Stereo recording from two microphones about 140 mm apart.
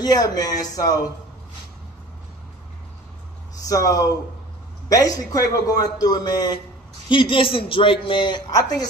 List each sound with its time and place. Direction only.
0.0 s a man's voice: 30° left (ahead or behind)
3.5 s a man's voice: 25° left (ahead or behind)